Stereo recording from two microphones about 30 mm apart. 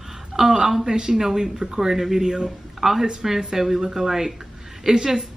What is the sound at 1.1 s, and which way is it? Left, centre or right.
A woman's voice, centre.